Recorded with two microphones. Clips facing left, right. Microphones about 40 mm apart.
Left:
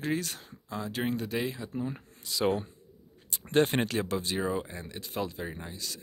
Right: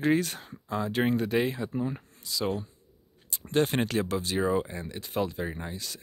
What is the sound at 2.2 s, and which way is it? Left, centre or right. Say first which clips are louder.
Speech: left 2 dB; left.